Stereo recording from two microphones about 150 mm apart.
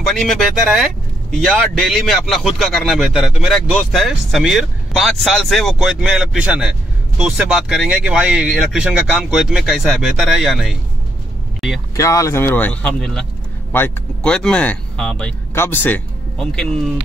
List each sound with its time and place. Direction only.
0.0 s a man's voice: centre (ahead or behind)
12.0 s speech: 20° left (ahead or behind); by 15.3 s 5° left (ahead or behind)
15.5 s speech: 15° left (ahead or behind)